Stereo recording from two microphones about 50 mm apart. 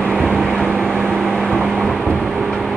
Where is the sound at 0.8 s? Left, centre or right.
Centre.